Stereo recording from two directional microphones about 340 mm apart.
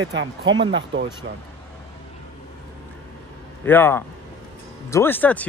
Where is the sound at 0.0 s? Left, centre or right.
Right.